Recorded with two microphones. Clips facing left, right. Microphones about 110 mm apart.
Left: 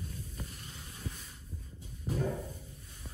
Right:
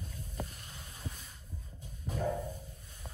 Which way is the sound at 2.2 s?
45° right (ahead or behind).